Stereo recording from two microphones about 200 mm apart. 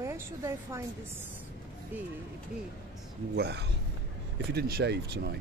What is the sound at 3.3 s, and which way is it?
Speech, 55° right (ahead or behind).